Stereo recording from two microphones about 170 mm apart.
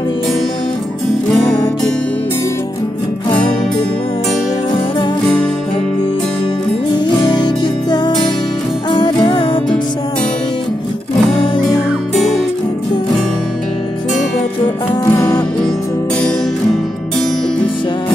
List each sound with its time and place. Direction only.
7.3 s music: 25° left (ahead or behind)
15.0 s music: 20° left (ahead or behind)